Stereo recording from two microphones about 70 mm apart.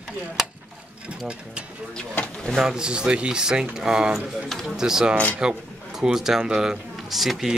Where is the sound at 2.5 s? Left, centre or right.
Centre.